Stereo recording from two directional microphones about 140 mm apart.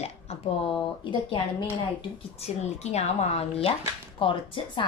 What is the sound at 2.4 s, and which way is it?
A woman's voice, 50° left (ahead or behind).